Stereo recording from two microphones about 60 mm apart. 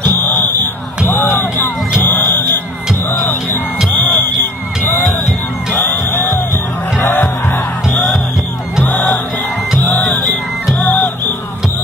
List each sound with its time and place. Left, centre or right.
0.2 s smoke detector: left
1.0 s music: left
7.0 s music: left